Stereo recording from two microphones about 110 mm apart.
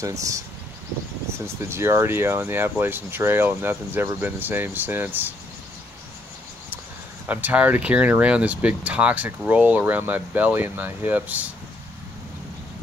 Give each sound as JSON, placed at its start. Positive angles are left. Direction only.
{"t": 0.0, "sound": "speech", "side_deg": -30}
{"t": 7.2, "sound": "speech", "side_deg": -15}